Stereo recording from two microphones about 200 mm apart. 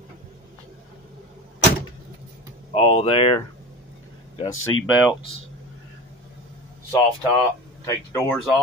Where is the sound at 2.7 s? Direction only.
30° left (ahead or behind).